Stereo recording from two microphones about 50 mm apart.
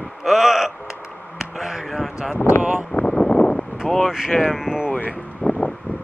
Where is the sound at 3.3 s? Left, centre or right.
Centre.